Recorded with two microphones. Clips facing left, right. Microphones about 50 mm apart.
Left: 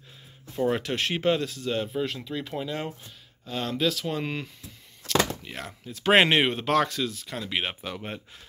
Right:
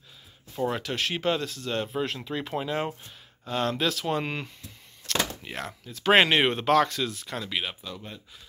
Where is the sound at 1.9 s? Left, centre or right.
Centre.